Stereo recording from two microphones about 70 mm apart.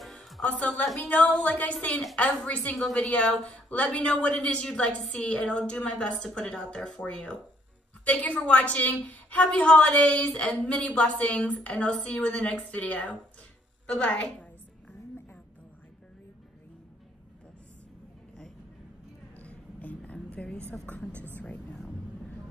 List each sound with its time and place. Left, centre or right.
0.0 s music: centre
0.8 s a woman's voice: centre
1.5 s a woman's voice: centre
2.7 s a woman's voice: centre
3.0 s a woman's voice: centre
19.3 s a sound: left
20.7 s a woman's voice: centre
21.4 s vehicle: left